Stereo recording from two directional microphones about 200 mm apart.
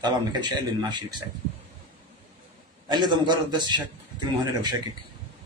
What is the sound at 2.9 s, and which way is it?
Speech, 20° right (ahead or behind).